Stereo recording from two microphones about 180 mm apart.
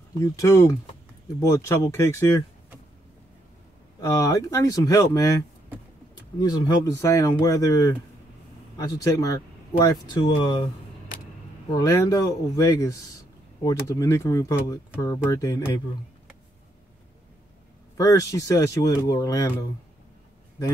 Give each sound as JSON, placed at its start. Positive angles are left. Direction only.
{"t": 0.2, "sound": "speech", "side_deg": 15}
{"t": 4.0, "sound": "speech", "side_deg": 20}
{"t": 6.4, "sound": "speech", "side_deg": 20}
{"t": 11.7, "sound": "speech", "side_deg": 20}
{"t": 17.9, "sound": "speech", "side_deg": 20}